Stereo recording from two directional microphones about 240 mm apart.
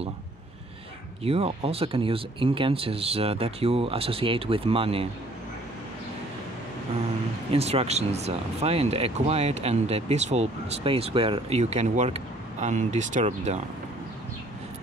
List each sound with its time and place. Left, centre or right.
1.2 s speech: right
7.5 s speech: right